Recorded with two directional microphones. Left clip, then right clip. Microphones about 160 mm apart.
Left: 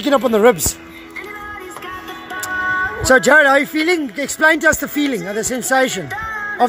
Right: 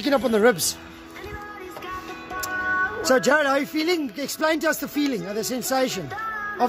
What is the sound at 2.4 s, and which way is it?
Music, 40° left (ahead or behind).